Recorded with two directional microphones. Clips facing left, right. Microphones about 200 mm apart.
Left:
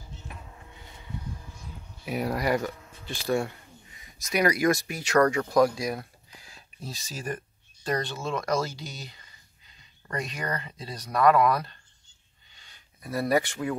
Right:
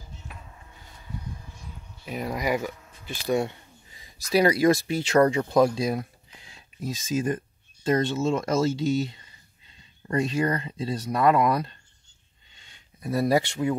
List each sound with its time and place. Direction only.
2.0 s speech: 5° left (ahead or behind)
2.4 s speech: 10° right (ahead or behind)
3.3 s speech: 20° right (ahead or behind)
12.5 s a sound: 25° right (ahead or behind)